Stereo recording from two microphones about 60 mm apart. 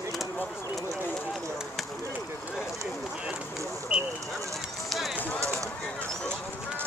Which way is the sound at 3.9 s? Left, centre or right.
Centre.